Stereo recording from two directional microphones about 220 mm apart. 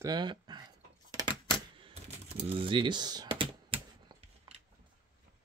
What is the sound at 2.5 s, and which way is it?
Typing, 25° right (ahead or behind).